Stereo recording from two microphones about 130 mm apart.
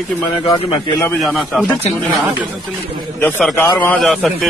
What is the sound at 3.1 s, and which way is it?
Speech, 15° left (ahead or behind).